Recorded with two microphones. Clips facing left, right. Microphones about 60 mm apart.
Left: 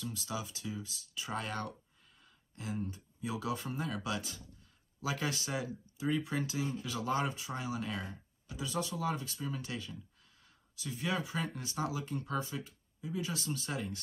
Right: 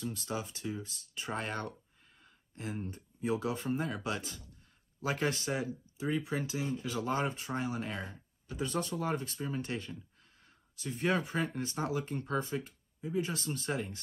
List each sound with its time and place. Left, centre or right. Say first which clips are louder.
0.0 s speech: right 2 dB; right